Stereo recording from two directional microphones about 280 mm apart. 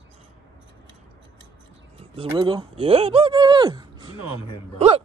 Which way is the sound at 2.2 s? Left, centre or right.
Centre.